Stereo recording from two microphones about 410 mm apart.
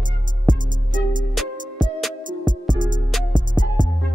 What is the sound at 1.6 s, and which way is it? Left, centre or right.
Music, centre.